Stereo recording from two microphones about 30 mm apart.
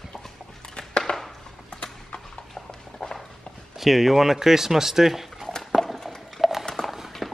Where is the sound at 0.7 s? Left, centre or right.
Left.